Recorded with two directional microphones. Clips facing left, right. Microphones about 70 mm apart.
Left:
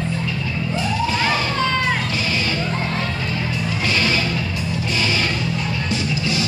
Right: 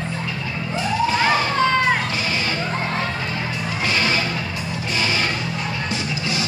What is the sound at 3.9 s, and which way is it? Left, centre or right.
Music, right.